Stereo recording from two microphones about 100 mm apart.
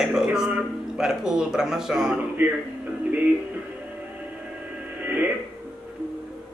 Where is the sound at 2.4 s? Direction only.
15° right (ahead or behind).